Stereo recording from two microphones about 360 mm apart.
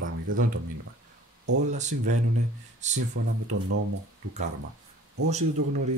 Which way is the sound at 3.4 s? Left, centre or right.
Right.